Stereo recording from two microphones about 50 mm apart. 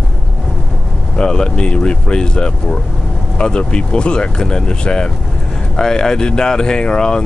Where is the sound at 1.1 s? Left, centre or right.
Centre.